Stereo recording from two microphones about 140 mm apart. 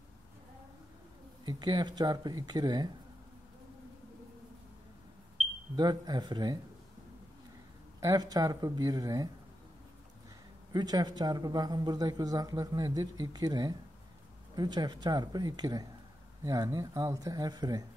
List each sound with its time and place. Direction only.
1.4 s a man's voice: 30° right (ahead or behind)
5.8 s speech: 30° right (ahead or behind)
8.0 s a man's voice: 25° right (ahead or behind)
10.7 s a man's voice: 30° right (ahead or behind)